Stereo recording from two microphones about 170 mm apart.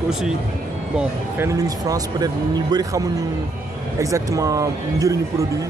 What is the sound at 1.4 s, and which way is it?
Speech, 20° right (ahead or behind).